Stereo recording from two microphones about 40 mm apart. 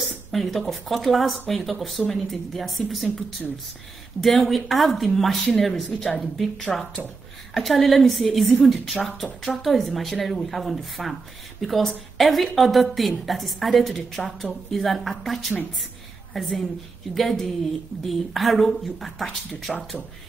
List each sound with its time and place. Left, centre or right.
0.3 s speech: centre
7.5 s speech: centre
16.3 s speech: centre
19.7 s speech: left